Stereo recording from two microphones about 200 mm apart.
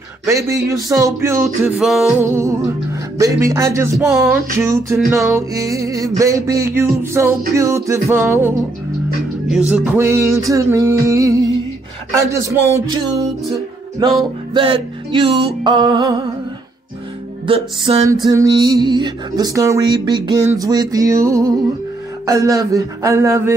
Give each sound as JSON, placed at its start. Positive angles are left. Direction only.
{"t": 0.3, "sound": "music", "side_deg": -15}
{"t": 1.8, "sound": "music", "side_deg": 0}
{"t": 2.3, "sound": "music", "side_deg": -15}
{"t": 13.9, "sound": "music", "side_deg": -20}
{"t": 17.5, "sound": "music", "side_deg": -30}
{"t": 18.0, "sound": "music", "side_deg": -20}